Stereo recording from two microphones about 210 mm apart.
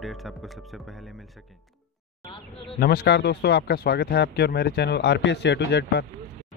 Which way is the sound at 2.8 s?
50° left (ahead or behind).